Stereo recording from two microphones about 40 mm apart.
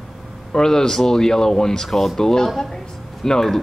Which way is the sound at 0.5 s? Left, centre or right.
Centre.